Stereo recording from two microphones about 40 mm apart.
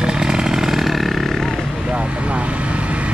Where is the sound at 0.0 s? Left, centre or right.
Centre.